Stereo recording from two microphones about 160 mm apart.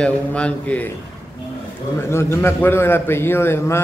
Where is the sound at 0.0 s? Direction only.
5° left (ahead or behind).